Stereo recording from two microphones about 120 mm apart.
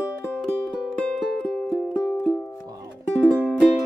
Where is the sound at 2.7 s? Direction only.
30° right (ahead or behind).